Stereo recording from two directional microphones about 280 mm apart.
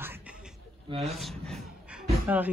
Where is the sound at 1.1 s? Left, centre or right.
Centre.